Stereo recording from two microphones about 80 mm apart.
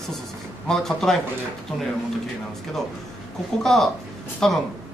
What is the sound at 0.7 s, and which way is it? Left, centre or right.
Speech, centre.